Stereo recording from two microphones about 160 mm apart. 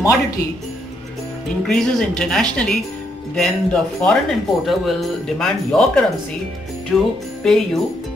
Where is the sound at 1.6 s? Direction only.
5° left (ahead or behind).